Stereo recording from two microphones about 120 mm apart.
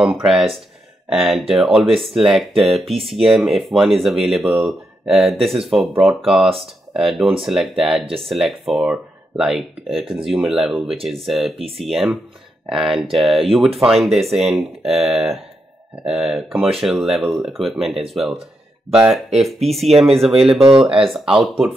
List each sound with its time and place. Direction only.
0.0 s speech: 5° right (ahead or behind)
11.5 s speech: 50° right (ahead or behind)
11.8 s speech: centre (ahead or behind)
20.5 s speech: 45° right (ahead or behind)
21.1 s speech: centre (ahead or behind)